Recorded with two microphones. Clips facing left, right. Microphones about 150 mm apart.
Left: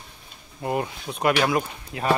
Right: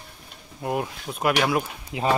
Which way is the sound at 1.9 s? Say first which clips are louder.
Right 2 dB; 20° right (ahead or behind).